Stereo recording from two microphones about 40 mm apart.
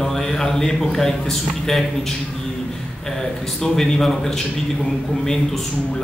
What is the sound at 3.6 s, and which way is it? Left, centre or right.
Speech, centre.